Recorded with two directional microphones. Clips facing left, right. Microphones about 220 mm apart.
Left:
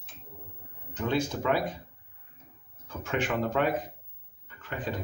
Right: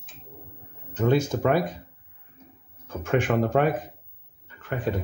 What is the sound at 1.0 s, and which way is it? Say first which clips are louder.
Speech: right 6 dB; 50° right (ahead or behind).